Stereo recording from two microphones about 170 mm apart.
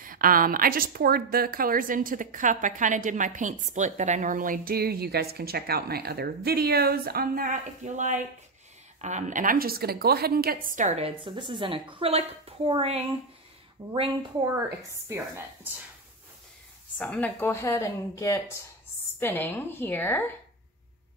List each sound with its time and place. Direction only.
0.0 s a woman's voice: 55° right (ahead or behind); by 13.0 s 35° right (ahead or behind)
13.8 s speech: 20° right (ahead or behind)
15.0 s speech: 15° right (ahead or behind)
17.0 s a woman's voice: 10° left (ahead or behind)